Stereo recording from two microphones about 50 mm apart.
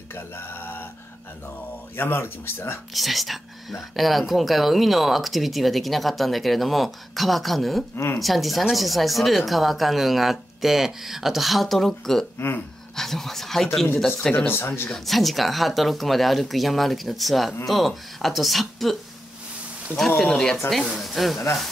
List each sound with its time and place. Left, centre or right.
0.1 s speech: left
2.0 s speech: left
2.9 s speech: centre
7.9 s speech: left
8.2 s speech: centre
14.3 s speech: left
15.0 s speech: centre
20.2 s speech: centre